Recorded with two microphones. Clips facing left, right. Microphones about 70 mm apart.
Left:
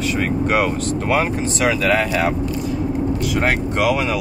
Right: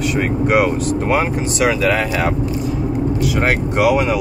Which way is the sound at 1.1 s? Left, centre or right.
Centre.